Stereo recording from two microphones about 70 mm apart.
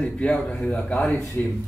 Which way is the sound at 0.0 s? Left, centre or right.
Centre.